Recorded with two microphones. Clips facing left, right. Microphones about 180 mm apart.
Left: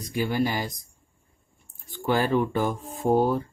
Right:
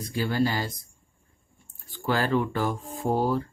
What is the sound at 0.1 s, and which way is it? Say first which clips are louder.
Speech: even; 15° left (ahead or behind).